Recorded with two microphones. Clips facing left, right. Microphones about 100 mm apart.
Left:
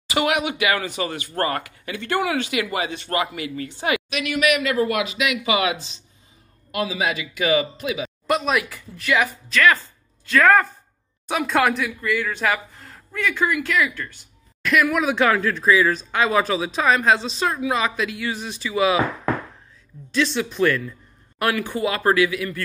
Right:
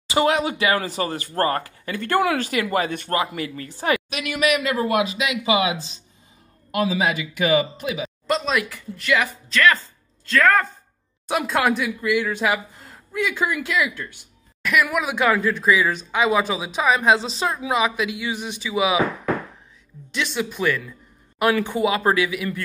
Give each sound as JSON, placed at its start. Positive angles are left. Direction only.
{"t": 0.1, "sound": "speech", "side_deg": -30}
{"t": 3.1, "sound": "speech", "side_deg": -35}
{"t": 6.7, "sound": "speech", "side_deg": -40}
{"t": 8.3, "sound": "speech", "side_deg": 10}
{"t": 11.2, "sound": "speech", "side_deg": 0}
{"t": 20.1, "sound": "speech", "side_deg": -15}